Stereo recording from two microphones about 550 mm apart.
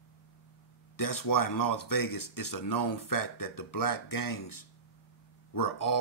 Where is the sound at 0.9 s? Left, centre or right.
Left.